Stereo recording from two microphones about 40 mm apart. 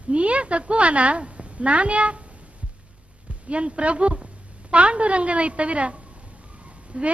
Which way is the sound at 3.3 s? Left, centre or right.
Right.